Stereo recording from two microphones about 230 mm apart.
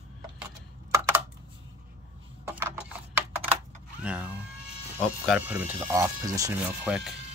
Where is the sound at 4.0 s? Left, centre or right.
Centre.